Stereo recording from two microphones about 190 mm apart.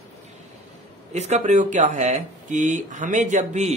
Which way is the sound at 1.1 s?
35° right (ahead or behind).